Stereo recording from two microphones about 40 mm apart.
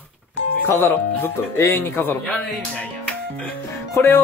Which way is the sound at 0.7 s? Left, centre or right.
Left.